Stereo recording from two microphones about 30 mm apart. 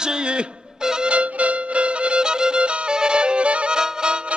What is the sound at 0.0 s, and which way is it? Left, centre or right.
Speech, right.